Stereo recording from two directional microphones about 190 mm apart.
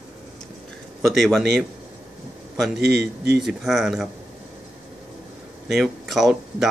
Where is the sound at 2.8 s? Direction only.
55° right (ahead or behind).